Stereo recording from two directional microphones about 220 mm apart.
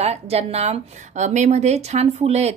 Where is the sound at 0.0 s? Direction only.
30° right (ahead or behind).